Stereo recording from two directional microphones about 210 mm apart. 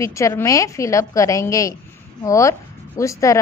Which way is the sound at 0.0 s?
15° left (ahead or behind).